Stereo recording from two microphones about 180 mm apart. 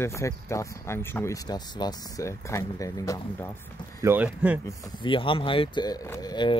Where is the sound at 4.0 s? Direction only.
10° right (ahead or behind).